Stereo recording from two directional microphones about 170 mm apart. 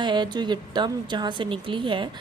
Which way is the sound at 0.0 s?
25° right (ahead or behind).